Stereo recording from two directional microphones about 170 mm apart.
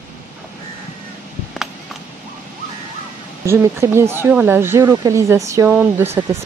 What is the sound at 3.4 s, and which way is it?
Speech, 15° right (ahead or behind).